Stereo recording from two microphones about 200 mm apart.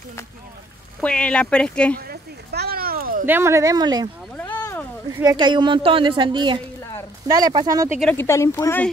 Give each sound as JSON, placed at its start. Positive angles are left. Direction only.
{"t": 1.0, "sound": "speech", "side_deg": 5}
{"t": 2.0, "sound": "a sound", "side_deg": -50}
{"t": 3.3, "sound": "a woman's voice", "side_deg": -10}
{"t": 5.1, "sound": "a woman's voice", "side_deg": -20}
{"t": 8.0, "sound": "speech", "side_deg": 10}